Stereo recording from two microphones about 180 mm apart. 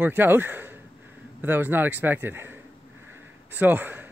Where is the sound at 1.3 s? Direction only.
10° right (ahead or behind).